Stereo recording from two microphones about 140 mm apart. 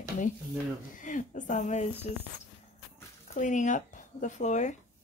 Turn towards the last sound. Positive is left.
turn(degrees=60)  # may be behind; listen again after turning